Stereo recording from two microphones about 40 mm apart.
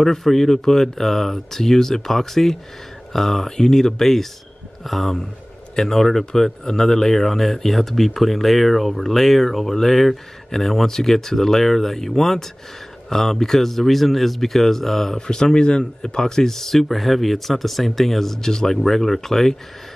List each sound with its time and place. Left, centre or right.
0.0 s speech: centre
15.1 s speech: centre